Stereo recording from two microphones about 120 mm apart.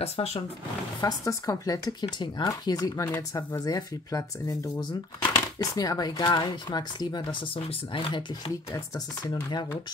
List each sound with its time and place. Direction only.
0.0 s speech: 60° left (ahead or behind)
1.0 s speech: 30° left (ahead or behind); by 8.2 s 50° left (ahead or behind)
8.7 s speech: 35° left (ahead or behind)